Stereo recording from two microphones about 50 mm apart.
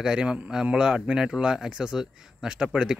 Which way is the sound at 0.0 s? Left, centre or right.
Centre.